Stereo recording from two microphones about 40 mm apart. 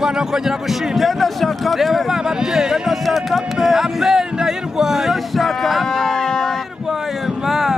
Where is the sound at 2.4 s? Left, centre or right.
Centre.